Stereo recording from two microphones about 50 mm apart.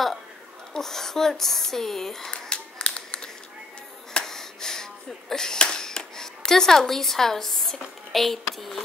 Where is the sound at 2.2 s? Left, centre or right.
Centre.